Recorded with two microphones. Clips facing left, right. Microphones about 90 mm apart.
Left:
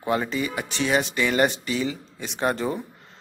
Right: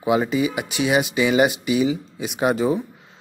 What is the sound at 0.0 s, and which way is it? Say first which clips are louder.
Speech: right 5 dB; 10° right (ahead or behind).